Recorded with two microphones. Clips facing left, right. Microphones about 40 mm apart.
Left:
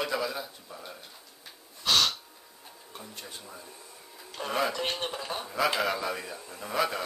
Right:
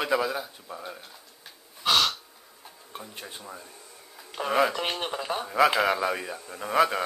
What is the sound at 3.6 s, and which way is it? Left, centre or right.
Vacuum cleaner, centre.